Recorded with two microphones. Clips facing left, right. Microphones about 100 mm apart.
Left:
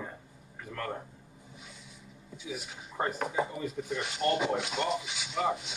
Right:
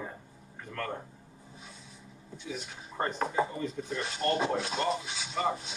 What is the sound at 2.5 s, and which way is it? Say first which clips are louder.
Speech: even; 5° left (ahead or behind).